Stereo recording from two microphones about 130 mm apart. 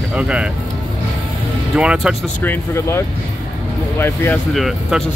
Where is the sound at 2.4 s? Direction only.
20° left (ahead or behind).